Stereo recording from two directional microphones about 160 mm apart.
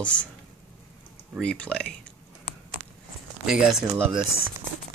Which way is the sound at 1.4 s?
5° left (ahead or behind).